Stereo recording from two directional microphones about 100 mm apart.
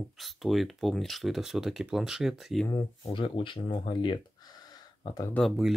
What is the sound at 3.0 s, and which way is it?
Speech, 60° left (ahead or behind).